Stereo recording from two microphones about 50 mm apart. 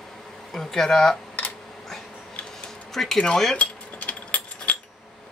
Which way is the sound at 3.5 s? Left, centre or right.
Left.